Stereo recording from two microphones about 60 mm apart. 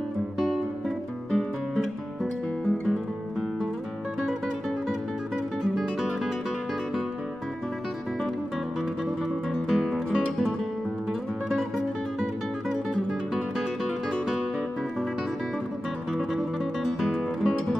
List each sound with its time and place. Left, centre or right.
0.4 s guitar: centre
5.6 s guitar: centre
9.5 s music: centre
12.9 s guitar: centre
16.1 s music: centre